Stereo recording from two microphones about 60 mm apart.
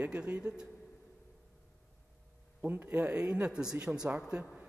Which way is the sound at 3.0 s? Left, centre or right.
Centre.